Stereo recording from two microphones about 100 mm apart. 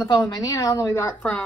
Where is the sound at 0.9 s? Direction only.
25° left (ahead or behind).